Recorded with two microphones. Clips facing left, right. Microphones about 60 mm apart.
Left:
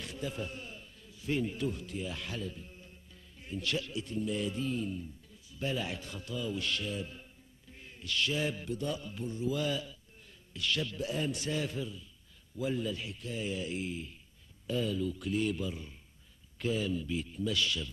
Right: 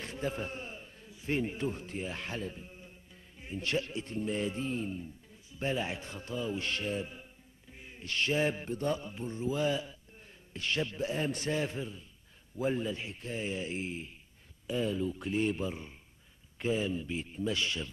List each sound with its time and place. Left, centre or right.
0.0 s a man's voice: right
5.5 s mantra: right
7.7 s a sound: centre
8.0 s mantra: right
14.7 s a man's voice: right